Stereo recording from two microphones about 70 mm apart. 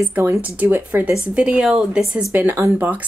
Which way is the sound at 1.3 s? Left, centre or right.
Centre.